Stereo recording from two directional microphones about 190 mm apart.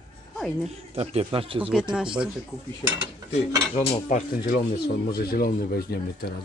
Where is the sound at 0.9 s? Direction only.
30° right (ahead or behind).